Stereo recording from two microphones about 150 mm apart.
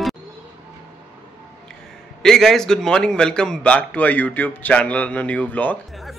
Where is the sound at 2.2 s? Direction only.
5° left (ahead or behind).